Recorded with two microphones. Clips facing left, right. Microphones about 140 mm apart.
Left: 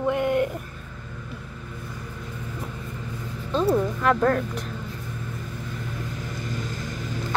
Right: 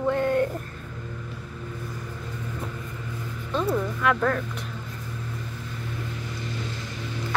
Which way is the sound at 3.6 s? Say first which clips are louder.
Left 5 dB; 15° left (ahead or behind).